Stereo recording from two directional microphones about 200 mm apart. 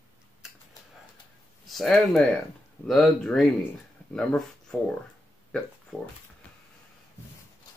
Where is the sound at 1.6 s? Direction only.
Centre (ahead or behind).